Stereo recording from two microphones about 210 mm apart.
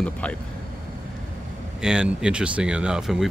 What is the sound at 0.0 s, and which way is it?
Speech, 5° left (ahead or behind).